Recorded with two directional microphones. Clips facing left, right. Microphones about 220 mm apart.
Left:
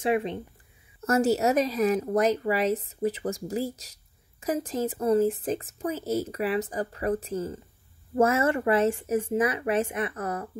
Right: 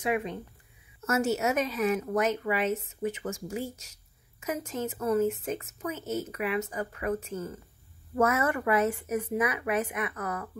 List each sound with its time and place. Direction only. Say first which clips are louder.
0.0 s a woman's voice: left 4 dB; 25° left (ahead or behind)